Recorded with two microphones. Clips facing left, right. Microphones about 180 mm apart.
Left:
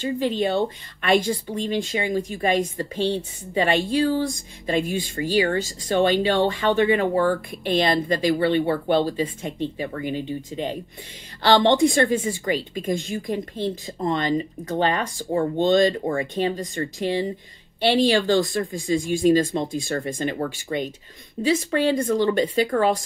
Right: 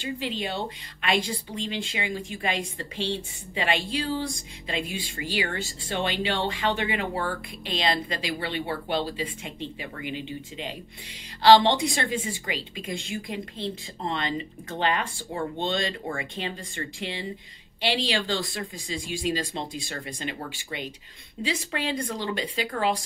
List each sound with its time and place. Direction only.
0.0 s speech: 45° left (ahead or behind)